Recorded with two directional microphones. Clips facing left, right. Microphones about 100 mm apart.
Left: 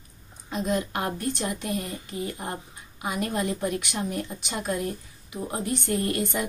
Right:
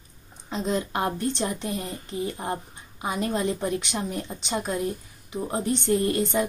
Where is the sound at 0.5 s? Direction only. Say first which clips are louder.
Even; 25° right (ahead or behind).